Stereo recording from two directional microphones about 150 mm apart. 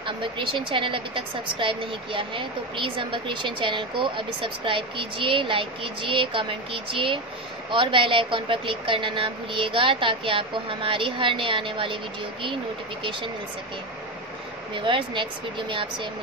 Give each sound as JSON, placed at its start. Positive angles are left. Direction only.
{"t": 0.0, "sound": "a woman's voice", "side_deg": -35}
{"t": 14.7, "sound": "a woman's voice", "side_deg": -35}